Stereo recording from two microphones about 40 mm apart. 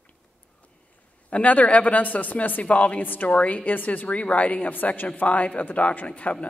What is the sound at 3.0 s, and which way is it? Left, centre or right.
A woman's voice, left.